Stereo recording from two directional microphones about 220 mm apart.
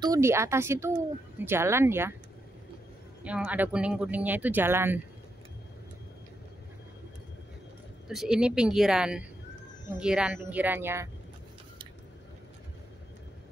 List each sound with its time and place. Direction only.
0.0 s speech: 15° right (ahead or behind)
3.3 s speech: 5° right (ahead or behind)
8.1 s speech: centre (ahead or behind)